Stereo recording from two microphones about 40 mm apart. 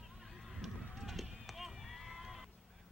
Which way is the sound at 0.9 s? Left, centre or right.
Centre.